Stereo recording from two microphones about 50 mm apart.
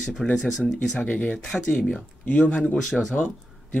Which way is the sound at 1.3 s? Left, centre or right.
Centre.